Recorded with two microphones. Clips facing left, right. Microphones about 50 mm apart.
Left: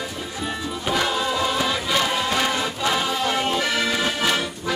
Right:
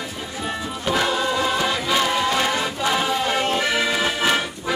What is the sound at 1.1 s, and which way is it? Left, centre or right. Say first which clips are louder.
Music: right 2 dB; centre.